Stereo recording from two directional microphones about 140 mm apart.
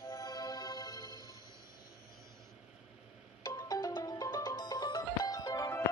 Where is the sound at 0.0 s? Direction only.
25° left (ahead or behind).